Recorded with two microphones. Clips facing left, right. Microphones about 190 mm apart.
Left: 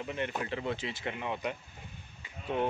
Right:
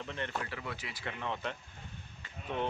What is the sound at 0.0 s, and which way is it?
Speech, 15° left (ahead or behind).